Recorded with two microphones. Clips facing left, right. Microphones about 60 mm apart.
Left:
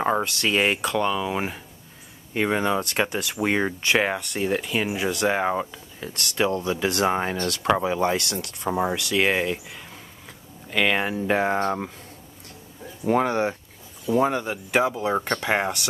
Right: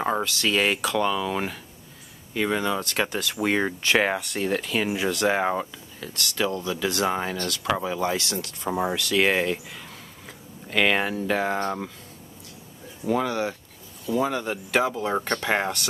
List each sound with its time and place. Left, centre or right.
0.2 s speech: left
0.8 s speech: centre
2.3 s speech: left
3.1 s speech: centre
5.9 s speech: left
7.1 s speech: left
8.6 s speech: centre
11.1 s speech: left
13.0 s speech: left
14.3 s speech: centre